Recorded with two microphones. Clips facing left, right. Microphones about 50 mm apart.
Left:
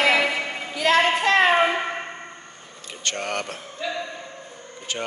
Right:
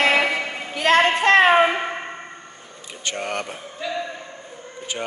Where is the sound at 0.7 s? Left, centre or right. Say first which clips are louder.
Right 2 dB; right.